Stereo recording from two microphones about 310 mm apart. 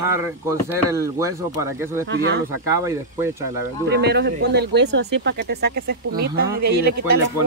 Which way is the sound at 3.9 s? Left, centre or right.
Right.